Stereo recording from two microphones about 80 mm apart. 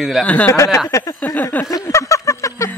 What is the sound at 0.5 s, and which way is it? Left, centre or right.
Speech, left.